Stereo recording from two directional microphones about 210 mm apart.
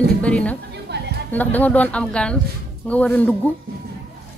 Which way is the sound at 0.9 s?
50° right (ahead or behind).